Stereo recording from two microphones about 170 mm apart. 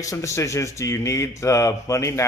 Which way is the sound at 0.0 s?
20° left (ahead or behind).